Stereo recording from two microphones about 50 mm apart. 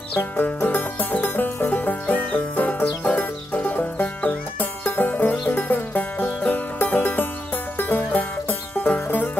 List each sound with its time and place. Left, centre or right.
0.4 s music: left